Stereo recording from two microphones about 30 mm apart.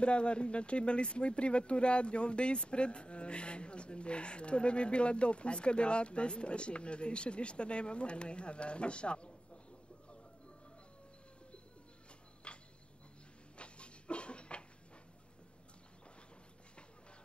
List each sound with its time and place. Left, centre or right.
0.0 s speech: left
12.5 s cricket: left
13.6 s dog: left